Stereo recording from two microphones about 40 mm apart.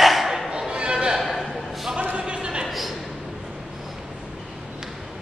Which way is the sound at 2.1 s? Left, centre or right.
Right.